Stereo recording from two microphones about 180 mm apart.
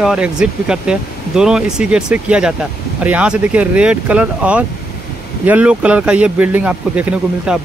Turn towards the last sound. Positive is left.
turn(degrees=-5)  # may be behind; listen again after turning